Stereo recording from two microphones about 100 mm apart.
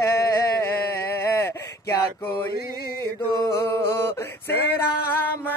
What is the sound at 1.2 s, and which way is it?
Male singing, 25° left (ahead or behind).